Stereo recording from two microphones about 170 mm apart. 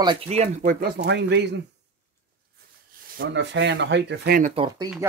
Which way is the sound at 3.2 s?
90° right.